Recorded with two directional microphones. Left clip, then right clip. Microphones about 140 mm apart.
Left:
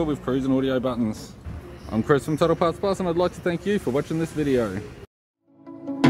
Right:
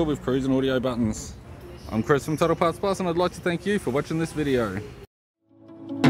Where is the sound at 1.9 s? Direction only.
5° right (ahead or behind).